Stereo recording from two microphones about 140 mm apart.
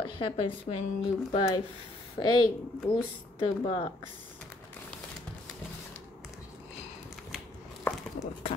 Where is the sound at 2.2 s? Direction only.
30° left (ahead or behind).